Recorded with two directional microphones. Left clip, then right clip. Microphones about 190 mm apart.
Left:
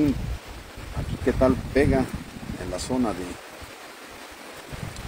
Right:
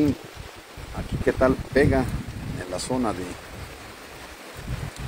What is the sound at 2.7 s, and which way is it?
Speech, 5° right (ahead or behind).